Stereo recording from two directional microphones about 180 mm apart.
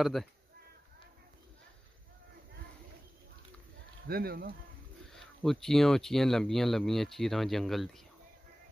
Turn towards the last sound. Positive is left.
turn(degrees=0)  # may be behind; listen again after turning